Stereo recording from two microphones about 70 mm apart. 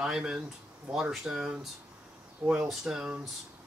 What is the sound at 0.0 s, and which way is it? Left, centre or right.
Speech, centre.